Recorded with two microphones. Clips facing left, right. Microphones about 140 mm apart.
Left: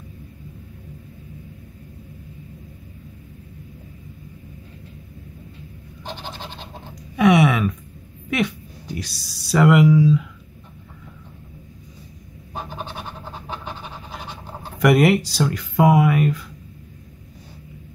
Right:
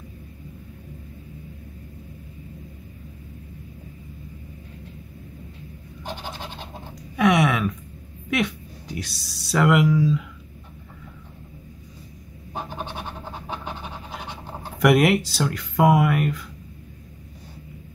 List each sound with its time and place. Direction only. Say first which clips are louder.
6.4 s scratch: even; 10° right (ahead or behind)
7.2 s speech: left 3 dB; 5° left (ahead or behind)
12.6 s pant: even; 15° right (ahead or behind)
14.8 s speech: left 2 dB; centre (ahead or behind)